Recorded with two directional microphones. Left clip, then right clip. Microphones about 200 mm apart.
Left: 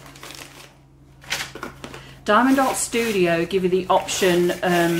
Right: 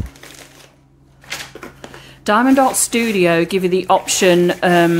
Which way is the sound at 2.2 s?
45° right (ahead or behind).